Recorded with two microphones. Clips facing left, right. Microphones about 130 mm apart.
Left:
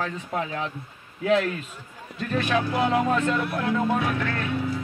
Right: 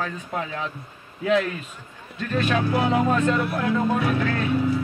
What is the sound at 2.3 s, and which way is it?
Speech, 30° right (ahead or behind).